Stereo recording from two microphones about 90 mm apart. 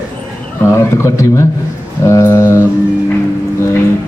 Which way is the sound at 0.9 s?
30° left (ahead or behind).